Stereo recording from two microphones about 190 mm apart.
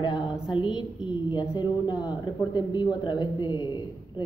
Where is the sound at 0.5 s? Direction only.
25° left (ahead or behind).